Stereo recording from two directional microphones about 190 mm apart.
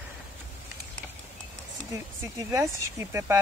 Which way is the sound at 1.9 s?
15° right (ahead or behind).